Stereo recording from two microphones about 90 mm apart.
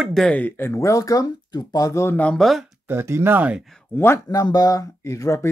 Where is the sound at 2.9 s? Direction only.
25° right (ahead or behind).